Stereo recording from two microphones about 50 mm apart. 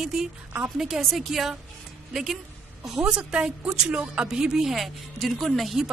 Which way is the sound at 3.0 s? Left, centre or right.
Right.